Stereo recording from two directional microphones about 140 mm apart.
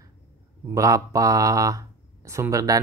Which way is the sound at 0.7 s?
25° right (ahead or behind).